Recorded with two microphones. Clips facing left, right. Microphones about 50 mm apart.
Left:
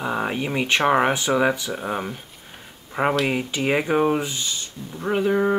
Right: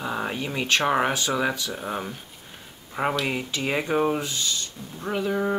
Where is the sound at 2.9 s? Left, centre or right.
Centre.